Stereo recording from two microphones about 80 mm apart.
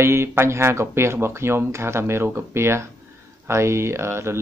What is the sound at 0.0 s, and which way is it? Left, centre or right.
Speech, right.